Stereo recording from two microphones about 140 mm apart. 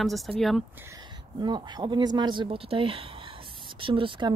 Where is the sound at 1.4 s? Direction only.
30° right (ahead or behind).